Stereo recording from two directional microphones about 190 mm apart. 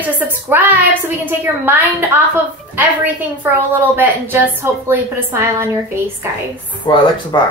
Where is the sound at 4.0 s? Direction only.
10° right (ahead or behind).